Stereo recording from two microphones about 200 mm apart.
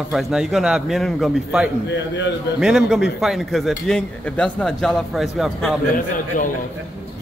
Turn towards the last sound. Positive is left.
turn(degrees=40)  # may be behind; listen again after turning